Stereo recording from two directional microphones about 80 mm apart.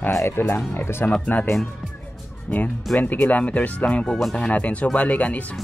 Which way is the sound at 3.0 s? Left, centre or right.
Centre.